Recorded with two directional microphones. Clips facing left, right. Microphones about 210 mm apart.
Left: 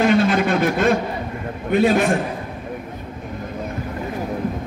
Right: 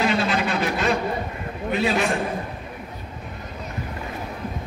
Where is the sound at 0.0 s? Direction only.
50° left (ahead or behind).